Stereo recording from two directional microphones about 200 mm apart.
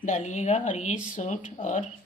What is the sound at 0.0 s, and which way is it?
A woman's voice, 35° left (ahead or behind).